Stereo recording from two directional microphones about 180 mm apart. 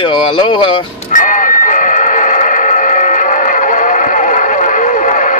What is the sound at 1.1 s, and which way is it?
Music, 45° left (ahead or behind).